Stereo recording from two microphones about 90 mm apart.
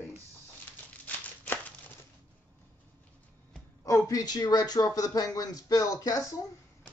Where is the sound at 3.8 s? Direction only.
40° left (ahead or behind).